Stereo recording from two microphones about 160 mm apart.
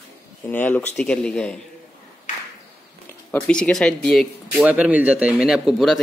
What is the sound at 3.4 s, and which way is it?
Speech, 5° left (ahead or behind).